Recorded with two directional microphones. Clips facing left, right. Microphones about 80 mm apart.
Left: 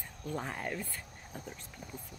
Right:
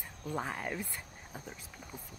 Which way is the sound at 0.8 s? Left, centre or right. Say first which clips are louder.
Even; centre.